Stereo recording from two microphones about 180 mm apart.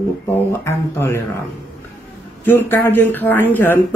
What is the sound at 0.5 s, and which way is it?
Speech, 15° left (ahead or behind).